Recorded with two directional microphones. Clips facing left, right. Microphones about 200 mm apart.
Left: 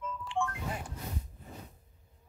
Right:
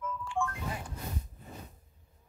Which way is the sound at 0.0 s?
20° left (ahead or behind).